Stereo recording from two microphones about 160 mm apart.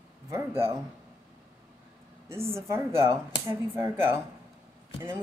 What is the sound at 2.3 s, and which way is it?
Speech, 15° right (ahead or behind).